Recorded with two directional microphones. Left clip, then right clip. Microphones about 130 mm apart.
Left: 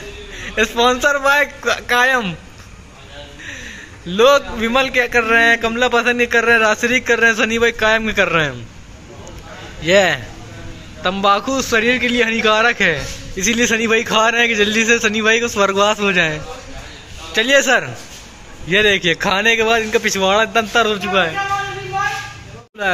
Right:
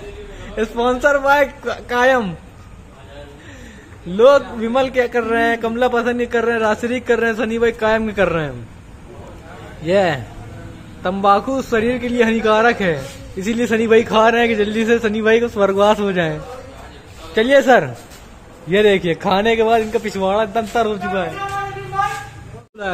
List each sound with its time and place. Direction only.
0.6 s a man's voice: 15° right (ahead or behind)
4.1 s a man's voice: 15° right (ahead or behind)
9.8 s a man's voice: 10° right (ahead or behind)